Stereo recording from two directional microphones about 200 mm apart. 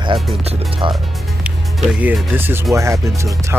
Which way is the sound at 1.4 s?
5° right (ahead or behind).